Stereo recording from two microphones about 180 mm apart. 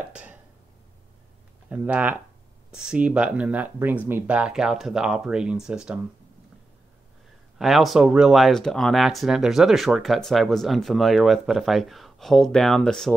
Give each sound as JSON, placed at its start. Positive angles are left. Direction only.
{"t": 0.1, "sound": "a sound", "side_deg": -10}
{"t": 1.7, "sound": "speech", "side_deg": -10}
{"t": 7.5, "sound": "speech", "side_deg": 0}